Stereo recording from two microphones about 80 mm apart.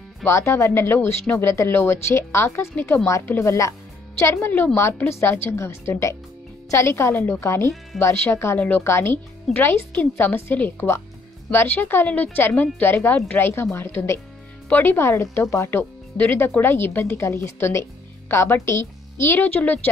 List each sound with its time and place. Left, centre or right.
0.2 s speech: left
7.9 s speech: centre
8.3 s speech: left
8.5 s speech: centre
8.8 s speech: left